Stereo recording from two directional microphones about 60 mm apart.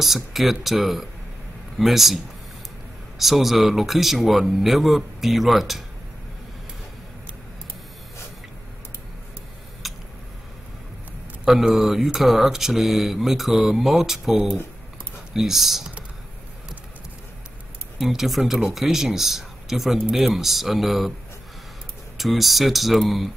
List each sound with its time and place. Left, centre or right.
0.0 s speech: centre
3.2 s speech: centre
9.8 s a sound: centre
11.4 s speech: centre
15.3 s speech: centre
17.9 s speech: centre
22.1 s speech: centre